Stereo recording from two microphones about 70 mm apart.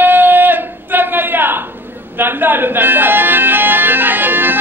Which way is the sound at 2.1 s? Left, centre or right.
Right.